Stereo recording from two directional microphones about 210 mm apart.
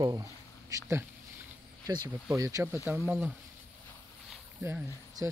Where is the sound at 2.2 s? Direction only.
15° right (ahead or behind).